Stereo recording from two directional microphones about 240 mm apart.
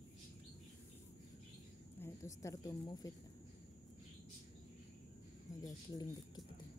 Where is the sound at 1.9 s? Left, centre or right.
Centre.